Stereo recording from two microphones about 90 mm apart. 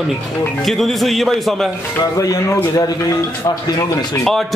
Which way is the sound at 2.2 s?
40° left (ahead or behind).